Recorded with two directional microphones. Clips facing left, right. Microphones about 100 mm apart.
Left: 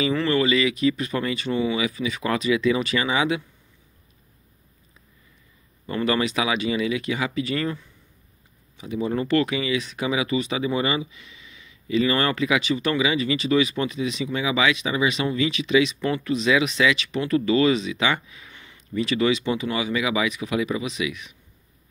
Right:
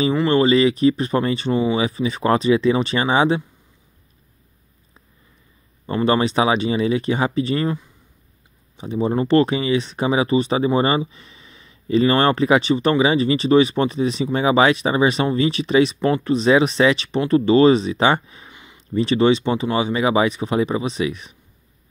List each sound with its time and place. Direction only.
0.1 s speech: 25° right (ahead or behind)
5.9 s speech: 30° right (ahead or behind)
8.7 s speech: 30° right (ahead or behind)
18.5 s a sound: 20° right (ahead or behind)
18.8 s speech: 30° right (ahead or behind)